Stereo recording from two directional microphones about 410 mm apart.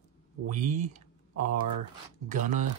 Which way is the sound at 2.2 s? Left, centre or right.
Centre.